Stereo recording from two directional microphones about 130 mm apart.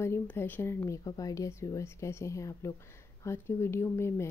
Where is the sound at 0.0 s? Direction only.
20° left (ahead or behind).